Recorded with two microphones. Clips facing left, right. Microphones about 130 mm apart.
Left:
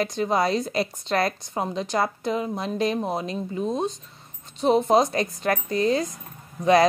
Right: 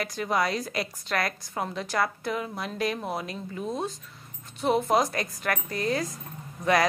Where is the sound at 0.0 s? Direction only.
25° left (ahead or behind).